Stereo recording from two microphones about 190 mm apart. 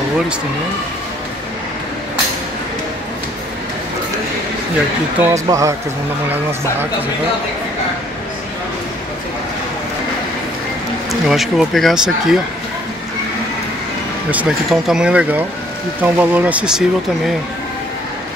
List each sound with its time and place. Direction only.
5.2 s speech: 15° right (ahead or behind)
11.1 s speech: centre (ahead or behind)
14.3 s speech: 5° right (ahead or behind)